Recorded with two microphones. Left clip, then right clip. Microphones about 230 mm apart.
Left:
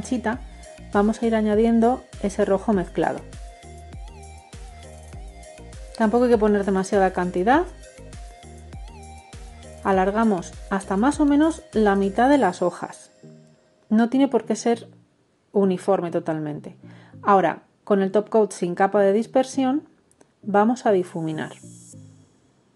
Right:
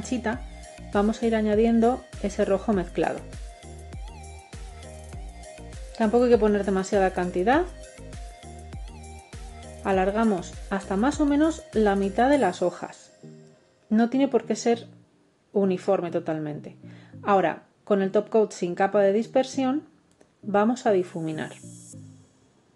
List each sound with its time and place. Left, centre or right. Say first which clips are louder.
0.0 s a woman's voice: left 3 dB; left
0.4 s music: left 1 dB; centre
0.9 s a woman's voice: left 3 dB; left
3.2 s music: left 2 dB; centre
5.9 s a woman's voice: left 1 dB; left
7.8 s music: even; centre
9.8 s a woman's voice: left 3 dB; left